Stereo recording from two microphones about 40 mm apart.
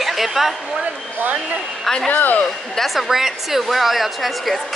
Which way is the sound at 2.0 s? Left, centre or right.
Left.